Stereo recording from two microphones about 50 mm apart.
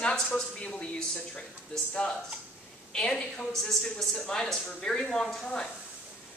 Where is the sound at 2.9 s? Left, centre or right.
Centre.